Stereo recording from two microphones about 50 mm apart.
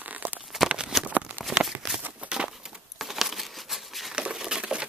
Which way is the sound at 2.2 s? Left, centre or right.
Centre.